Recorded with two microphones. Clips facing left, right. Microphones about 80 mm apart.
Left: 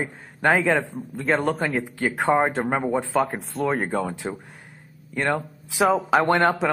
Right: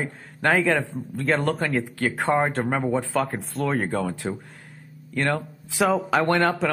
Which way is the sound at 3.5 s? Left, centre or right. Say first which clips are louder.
Left 1 dB; centre.